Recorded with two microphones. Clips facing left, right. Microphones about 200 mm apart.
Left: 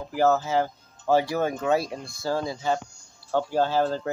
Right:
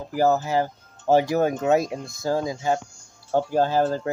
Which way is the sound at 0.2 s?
15° right (ahead or behind).